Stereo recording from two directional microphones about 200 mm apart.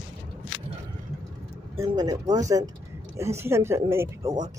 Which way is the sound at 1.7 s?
15° right (ahead or behind).